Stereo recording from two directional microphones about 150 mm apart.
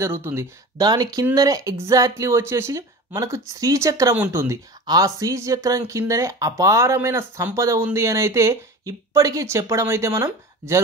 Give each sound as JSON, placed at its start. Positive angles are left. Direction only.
{"t": 0.0, "sound": "speech", "side_deg": -15}